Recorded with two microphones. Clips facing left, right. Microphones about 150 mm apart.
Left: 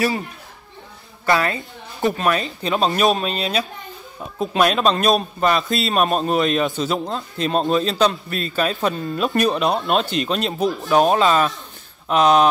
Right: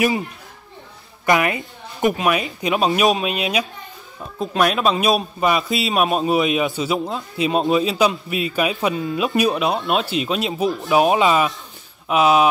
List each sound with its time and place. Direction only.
1.2 s a man's voice: 15° right (ahead or behind)
4.2 s a man's voice: centre (ahead or behind)